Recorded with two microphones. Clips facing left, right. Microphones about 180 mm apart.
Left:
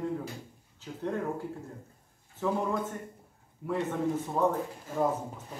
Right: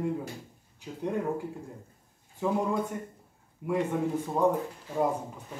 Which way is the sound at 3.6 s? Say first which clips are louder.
Right 2 dB; 15° right (ahead or behind).